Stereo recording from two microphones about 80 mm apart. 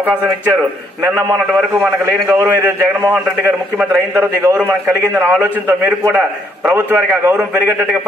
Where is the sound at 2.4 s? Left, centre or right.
Right.